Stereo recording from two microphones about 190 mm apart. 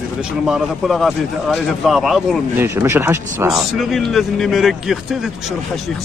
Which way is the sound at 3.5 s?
Centre (ahead or behind).